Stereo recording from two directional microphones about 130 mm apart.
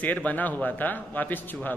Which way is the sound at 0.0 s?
10° left (ahead or behind).